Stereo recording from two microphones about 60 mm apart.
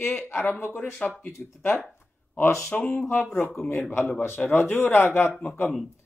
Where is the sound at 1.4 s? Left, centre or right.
Centre.